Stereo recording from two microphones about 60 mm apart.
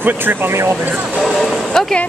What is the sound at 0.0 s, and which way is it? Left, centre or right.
Speech, right.